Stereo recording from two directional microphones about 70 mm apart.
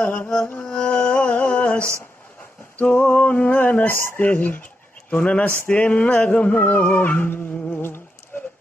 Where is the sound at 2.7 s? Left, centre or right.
Left.